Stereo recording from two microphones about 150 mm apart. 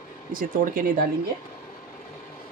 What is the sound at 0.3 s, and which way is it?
Speech, 70° right (ahead or behind).